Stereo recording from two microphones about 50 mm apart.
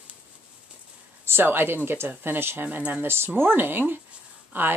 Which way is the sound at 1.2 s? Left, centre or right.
Right.